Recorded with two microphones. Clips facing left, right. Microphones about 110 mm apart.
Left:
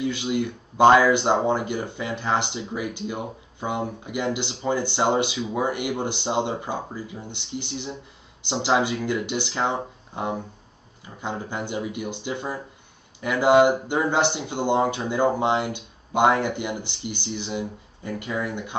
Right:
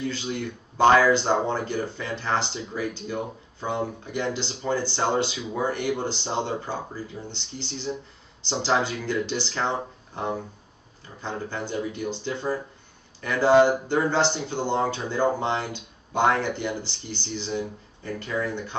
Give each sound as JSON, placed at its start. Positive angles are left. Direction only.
{"t": 0.0, "sound": "speech", "side_deg": 15}